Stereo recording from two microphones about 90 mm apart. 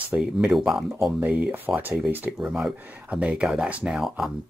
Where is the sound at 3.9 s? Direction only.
5° right (ahead or behind).